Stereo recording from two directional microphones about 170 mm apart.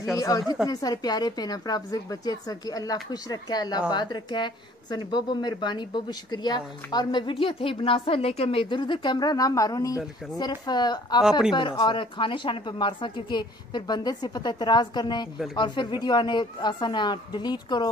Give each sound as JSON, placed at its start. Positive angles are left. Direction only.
{"t": 0.2, "sound": "speech", "side_deg": 20}